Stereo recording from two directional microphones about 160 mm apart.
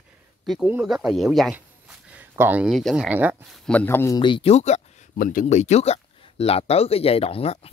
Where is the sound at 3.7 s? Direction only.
10° left (ahead or behind).